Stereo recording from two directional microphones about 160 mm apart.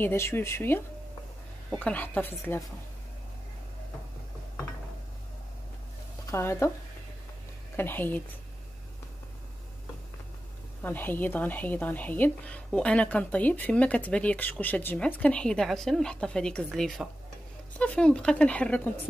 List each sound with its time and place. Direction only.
0.0 s a woman's voice: 15° left (ahead or behind)
6.3 s a woman's voice: 15° left (ahead or behind)
7.7 s a woman's voice: 10° left (ahead or behind)
10.8 s a woman's voice: 10° left (ahead or behind)